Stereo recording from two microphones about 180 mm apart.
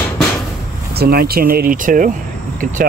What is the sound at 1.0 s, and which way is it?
Speech, 60° right (ahead or behind).